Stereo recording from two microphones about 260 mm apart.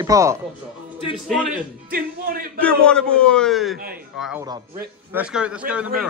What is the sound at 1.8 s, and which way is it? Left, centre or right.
Speech, right.